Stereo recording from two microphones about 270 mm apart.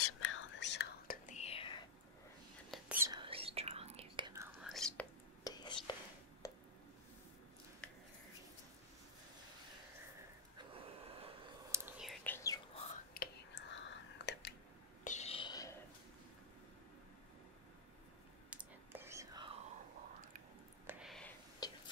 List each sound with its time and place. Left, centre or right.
0.0 s whispering: left; by 1.9 s centre
2.7 s whispering: centre
4.6 s whispering: centre
5.4 s whispering: centre
6.4 s a sound: centre
7.8 s a sound: centre
10.6 s gasp: centre
11.7 s whispering: centre
13.1 s whispering: left
15.0 s whispering: left
18.5 s whispering: centre
20.8 s a sound: centre
21.5 s whispering: centre